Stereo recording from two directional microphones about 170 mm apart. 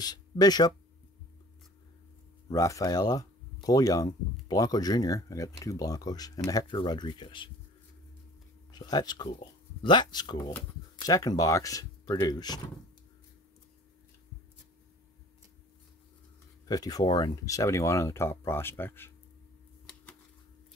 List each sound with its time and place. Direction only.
0.0 s speech: 25° left (ahead or behind)
2.5 s speech: 20° left (ahead or behind)
8.7 s speech: 25° left (ahead or behind)
16.6 s speech: 20° left (ahead or behind)